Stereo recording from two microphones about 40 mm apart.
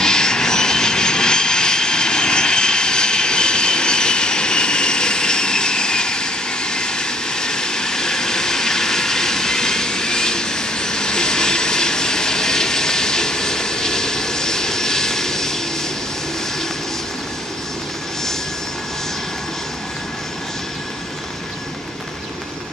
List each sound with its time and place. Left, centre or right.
0.0 s vehicle: centre